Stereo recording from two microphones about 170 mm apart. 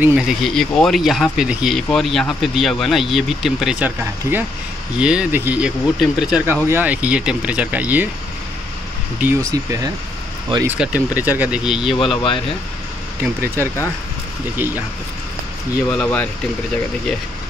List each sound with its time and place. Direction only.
0.0 s speech: centre (ahead or behind)
9.2 s speech: 15° right (ahead or behind)
10.7 s speech: 10° right (ahead or behind)
11.9 s speech: 30° left (ahead or behind)
13.2 s speech: 15° right (ahead or behind)
15.9 s speech: 5° left (ahead or behind)